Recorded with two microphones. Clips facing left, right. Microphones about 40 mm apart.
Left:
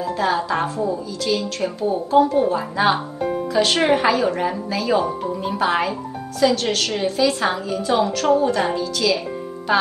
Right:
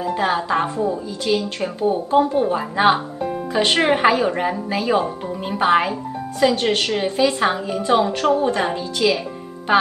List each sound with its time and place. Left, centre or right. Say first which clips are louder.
0.0 s speech: even; right